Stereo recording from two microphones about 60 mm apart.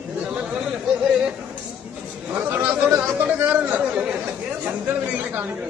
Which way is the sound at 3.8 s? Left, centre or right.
Centre.